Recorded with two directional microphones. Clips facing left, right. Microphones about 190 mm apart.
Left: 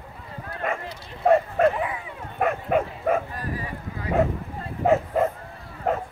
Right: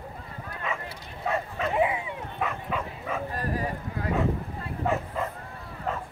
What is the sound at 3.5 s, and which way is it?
Clip-clop, 45° right (ahead or behind).